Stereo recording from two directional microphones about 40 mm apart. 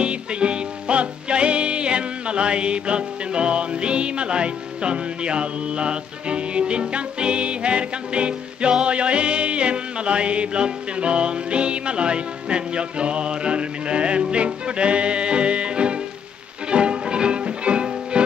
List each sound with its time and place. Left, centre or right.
0.0 s music: right